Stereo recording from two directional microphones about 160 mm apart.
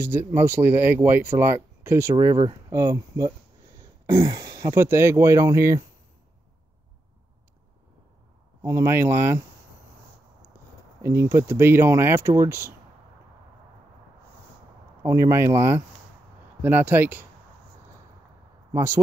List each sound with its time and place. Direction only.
0.0 s speech: 15° right (ahead or behind)
8.6 s speech: 15° right (ahead or behind)
11.0 s speech: 20° right (ahead or behind)
15.0 s speech: 20° right (ahead or behind)
18.7 s speech: 20° right (ahead or behind)